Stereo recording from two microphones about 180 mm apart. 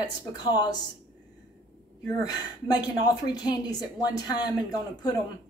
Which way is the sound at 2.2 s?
20° left (ahead or behind).